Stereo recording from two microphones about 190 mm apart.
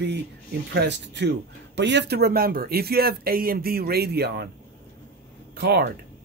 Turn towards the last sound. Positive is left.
turn(degrees=-60)  # may be behind; listen again after turning